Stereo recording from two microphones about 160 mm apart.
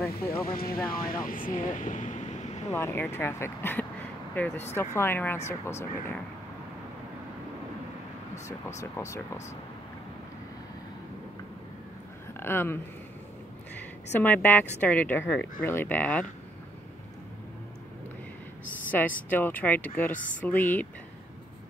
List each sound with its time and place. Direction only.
0.5 s speech: 70° left (ahead or behind)
1.6 s waves: 50° left (ahead or behind)
2.7 s speech: 15° left (ahead or behind)
8.5 s speech: 20° left (ahead or behind)
12.4 s speech: 15° left (ahead or behind)
14.2 s speech: 10° left (ahead or behind)
18.9 s speech: 10° left (ahead or behind)